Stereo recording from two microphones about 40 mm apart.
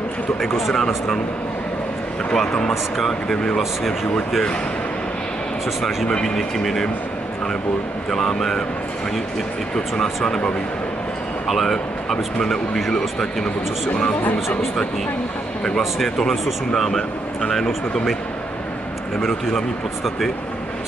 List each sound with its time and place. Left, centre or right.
0.7 s speech: centre
2.3 s speech: centre
5.8 s speech: centre
6.2 s speech: centre
8.1 s speech: centre
9.8 s speech: centre
11.4 s speech: centre
11.7 s speech: centre
16.7 s speech: centre